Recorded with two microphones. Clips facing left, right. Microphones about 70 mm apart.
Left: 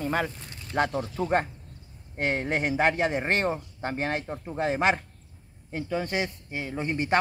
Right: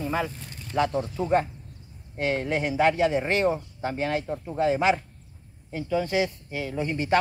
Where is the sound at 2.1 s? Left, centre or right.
Left.